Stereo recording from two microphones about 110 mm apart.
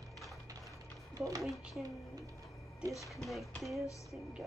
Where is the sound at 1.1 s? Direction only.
30° right (ahead or behind).